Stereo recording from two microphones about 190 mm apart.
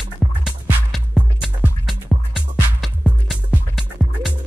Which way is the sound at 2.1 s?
20° right (ahead or behind).